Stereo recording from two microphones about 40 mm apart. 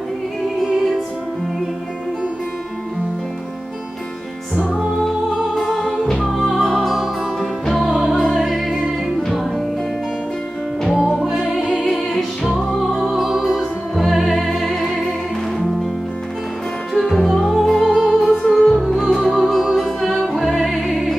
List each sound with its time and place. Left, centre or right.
0.7 s music: centre
5.7 s music: centre
6.2 s music: centre
6.9 s music: centre
8.2 s music: centre
8.5 s music: centre
10.9 s music: centre
11.3 s music: centre
11.6 s music: centre
11.9 s music: centre
12.9 s music: centre
16.9 s music: centre
19.2 s music: centre